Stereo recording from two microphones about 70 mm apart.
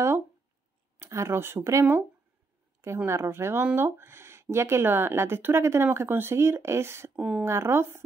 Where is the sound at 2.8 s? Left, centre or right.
Right.